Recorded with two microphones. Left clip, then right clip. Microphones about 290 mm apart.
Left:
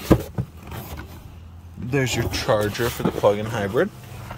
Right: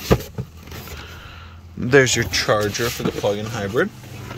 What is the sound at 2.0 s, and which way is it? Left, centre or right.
Speech, centre.